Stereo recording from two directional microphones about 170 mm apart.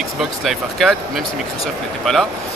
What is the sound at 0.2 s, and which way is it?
Speech, centre (ahead or behind).